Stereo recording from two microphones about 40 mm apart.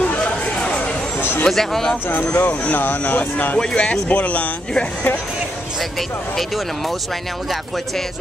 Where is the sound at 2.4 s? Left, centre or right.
Left.